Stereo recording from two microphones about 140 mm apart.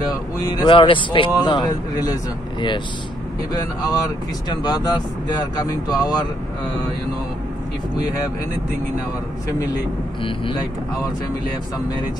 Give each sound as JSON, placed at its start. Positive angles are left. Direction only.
{"t": 0.5, "sound": "speech", "side_deg": 30}
{"t": 4.5, "sound": "speech", "side_deg": 30}
{"t": 9.5, "sound": "speech", "side_deg": 25}
{"t": 10.2, "sound": "speech", "side_deg": 40}